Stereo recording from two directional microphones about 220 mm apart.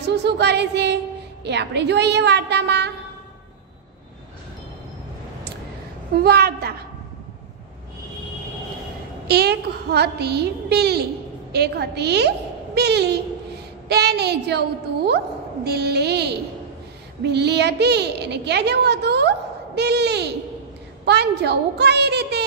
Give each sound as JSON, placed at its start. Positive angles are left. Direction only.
{"t": 0.0, "sound": "a child's voice", "side_deg": -50}
{"t": 6.2, "sound": "a child's voice", "side_deg": -45}
{"t": 9.3, "sound": "a child's voice", "side_deg": -45}
{"t": 15.6, "sound": "a child's voice", "side_deg": -50}